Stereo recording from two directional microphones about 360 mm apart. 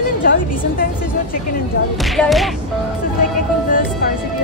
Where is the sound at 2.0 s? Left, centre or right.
Centre.